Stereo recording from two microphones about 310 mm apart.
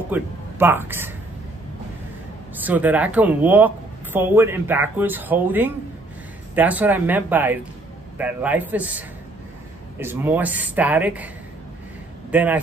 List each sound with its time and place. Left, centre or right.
0.1 s speech: centre
2.6 s speech: centre
12.3 s speech: centre